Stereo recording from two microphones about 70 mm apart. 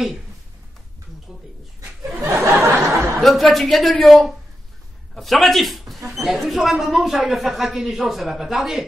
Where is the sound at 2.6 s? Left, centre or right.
Right.